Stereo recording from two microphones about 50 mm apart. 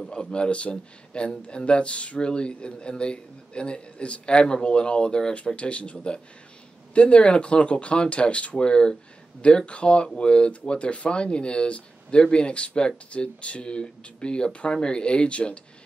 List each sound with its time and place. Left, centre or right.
0.1 s speech: centre